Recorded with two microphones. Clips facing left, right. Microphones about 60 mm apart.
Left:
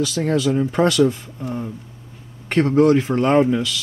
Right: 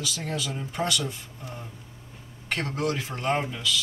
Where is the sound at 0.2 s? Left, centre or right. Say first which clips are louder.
Left 17 dB; left.